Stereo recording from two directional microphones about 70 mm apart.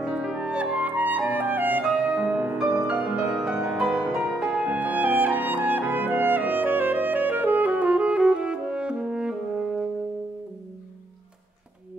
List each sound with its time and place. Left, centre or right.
0.0 s clarinet: centre; by 1.9 s right
1.9 s music: right
4.6 s music: right